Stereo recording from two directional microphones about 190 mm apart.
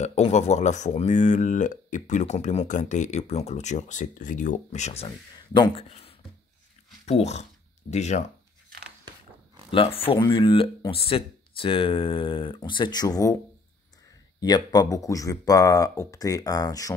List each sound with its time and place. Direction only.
0.0 s speech: 35° left (ahead or behind)
9.7 s speech: 30° left (ahead or behind)
14.4 s speech: 20° left (ahead or behind)